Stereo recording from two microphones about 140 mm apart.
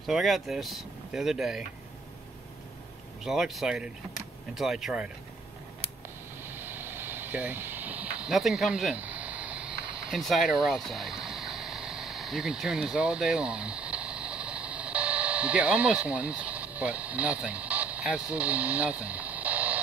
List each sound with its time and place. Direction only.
0.0 s speech: centre (ahead or behind)
3.3 s speech: centre (ahead or behind)
6.4 s vehicle: 15° right (ahead or behind)